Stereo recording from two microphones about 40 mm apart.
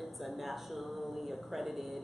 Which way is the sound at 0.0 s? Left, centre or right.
Centre.